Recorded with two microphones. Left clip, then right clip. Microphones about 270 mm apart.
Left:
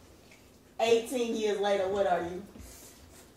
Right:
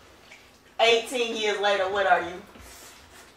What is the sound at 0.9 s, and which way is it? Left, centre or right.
Speech, right.